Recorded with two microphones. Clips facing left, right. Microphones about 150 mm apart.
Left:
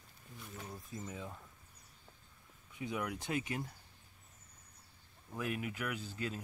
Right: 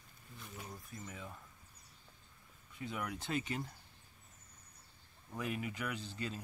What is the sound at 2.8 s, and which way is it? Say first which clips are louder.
Speech: left 3 dB; 15° left (ahead or behind).